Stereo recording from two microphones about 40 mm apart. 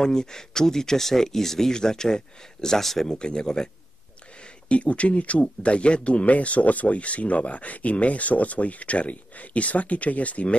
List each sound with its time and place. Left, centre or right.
0.0 s speech: centre
3.2 s speech: left
4.6 s speech: left